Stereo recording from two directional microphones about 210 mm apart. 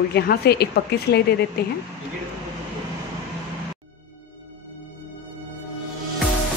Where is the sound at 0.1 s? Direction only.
50° left (ahead or behind).